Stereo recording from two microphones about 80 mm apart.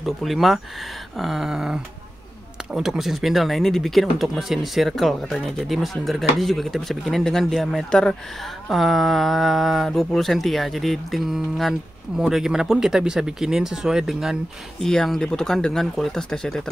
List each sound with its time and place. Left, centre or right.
0.0 s speech: centre
14.9 s speech: centre